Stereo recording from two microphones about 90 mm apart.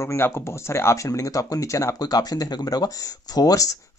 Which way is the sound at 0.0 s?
30° left (ahead or behind).